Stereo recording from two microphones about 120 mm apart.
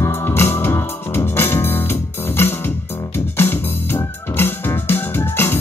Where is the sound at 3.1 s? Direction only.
20° left (ahead or behind).